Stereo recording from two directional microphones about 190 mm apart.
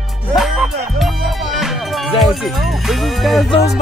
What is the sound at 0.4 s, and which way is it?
Music, centre (ahead or behind).